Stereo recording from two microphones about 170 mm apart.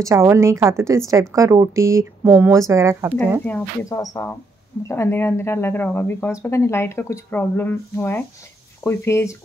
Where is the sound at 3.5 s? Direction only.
10° left (ahead or behind).